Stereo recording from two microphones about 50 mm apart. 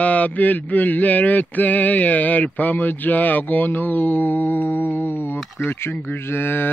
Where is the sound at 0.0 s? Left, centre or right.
Left.